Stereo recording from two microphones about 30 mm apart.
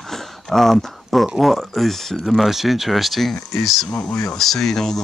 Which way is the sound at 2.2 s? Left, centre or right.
Centre.